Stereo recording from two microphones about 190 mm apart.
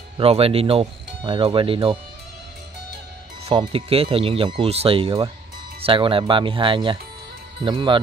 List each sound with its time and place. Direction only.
0.2 s speech: 30° right (ahead or behind)
3.4 s speech: 25° right (ahead or behind)